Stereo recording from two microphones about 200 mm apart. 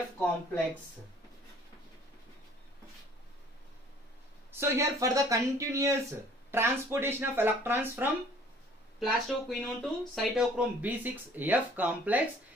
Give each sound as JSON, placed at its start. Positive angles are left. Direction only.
{"t": 4.5, "sound": "speech", "side_deg": -15}
{"t": 9.0, "sound": "speech", "side_deg": 0}